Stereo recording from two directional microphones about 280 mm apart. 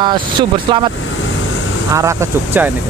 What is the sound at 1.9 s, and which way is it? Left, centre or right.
Speech, centre.